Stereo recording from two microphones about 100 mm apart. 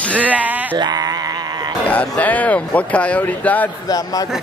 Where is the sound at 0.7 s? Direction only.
45° right (ahead or behind).